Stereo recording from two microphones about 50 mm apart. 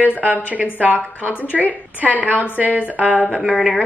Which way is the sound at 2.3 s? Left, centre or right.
Left.